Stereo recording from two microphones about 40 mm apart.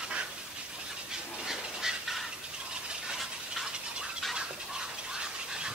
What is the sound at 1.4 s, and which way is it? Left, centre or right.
Duck, centre.